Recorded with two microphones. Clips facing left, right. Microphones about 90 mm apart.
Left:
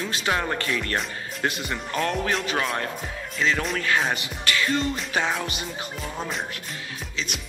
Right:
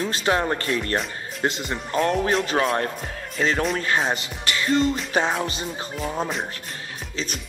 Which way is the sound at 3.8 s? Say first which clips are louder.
Right 1 dB; 30° right (ahead or behind).